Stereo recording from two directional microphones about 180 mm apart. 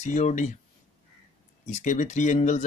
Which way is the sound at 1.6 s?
40° left (ahead or behind).